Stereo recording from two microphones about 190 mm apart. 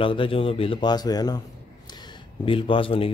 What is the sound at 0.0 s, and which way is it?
A man's voice, 25° left (ahead or behind).